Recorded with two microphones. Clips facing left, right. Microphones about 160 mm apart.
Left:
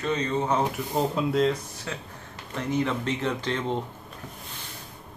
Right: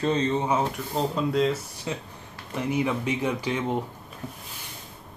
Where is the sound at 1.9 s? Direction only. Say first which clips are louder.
Right 4 dB; 20° right (ahead or behind).